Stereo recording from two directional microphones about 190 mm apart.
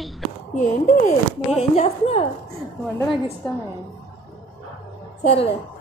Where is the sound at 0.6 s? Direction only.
35° left (ahead or behind).